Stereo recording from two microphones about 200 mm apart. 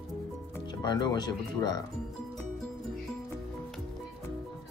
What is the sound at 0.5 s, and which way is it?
Speech, 20° left (ahead or behind).